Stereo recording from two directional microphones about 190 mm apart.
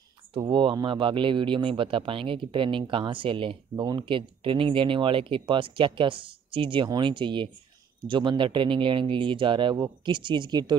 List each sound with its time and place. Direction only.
0.3 s speech: 25° right (ahead or behind)